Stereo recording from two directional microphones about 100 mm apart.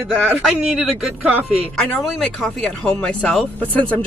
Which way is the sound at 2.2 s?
10° left (ahead or behind).